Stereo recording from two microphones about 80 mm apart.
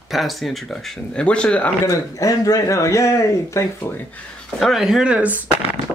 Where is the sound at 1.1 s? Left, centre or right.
Centre.